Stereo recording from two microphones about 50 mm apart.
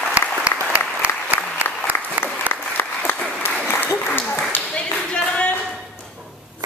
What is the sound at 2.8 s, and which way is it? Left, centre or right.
Applause, left.